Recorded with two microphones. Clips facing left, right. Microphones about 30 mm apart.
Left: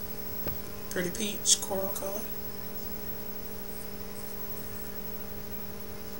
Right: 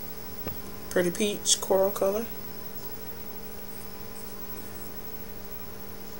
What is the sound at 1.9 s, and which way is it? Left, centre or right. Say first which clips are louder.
Speech: right 10 dB; right.